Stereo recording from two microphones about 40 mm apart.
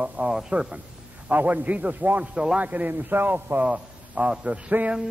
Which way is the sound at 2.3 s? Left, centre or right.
Right.